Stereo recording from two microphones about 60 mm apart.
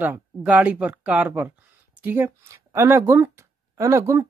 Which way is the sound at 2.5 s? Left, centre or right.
Right.